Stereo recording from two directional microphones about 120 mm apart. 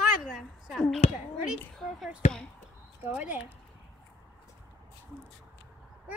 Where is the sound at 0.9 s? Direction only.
65° left (ahead or behind).